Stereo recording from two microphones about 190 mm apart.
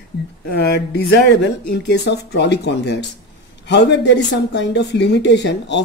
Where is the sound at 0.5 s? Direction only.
60° left (ahead or behind).